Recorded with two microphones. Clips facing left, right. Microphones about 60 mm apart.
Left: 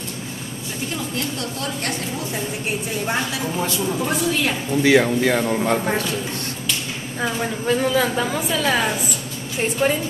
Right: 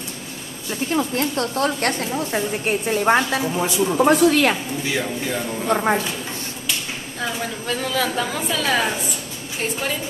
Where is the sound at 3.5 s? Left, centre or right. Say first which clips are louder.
Right 1 dB; centre.